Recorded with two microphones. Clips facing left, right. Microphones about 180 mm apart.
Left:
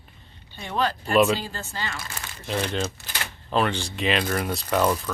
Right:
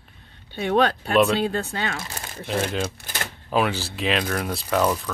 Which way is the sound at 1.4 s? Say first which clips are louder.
Right 9 dB; 65° right (ahead or behind).